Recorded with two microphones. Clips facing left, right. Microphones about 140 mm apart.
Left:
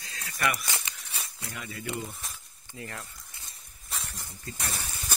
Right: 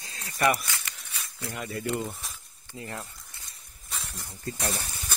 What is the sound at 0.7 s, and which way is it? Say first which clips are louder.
Crumpling: left 1 dB; 20° left (ahead or behind).